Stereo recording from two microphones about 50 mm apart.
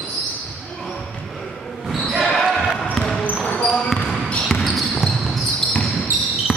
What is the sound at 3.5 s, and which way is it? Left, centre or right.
Basketball bounce, left.